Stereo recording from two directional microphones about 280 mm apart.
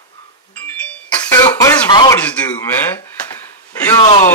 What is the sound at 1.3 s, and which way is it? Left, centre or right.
Speech, centre.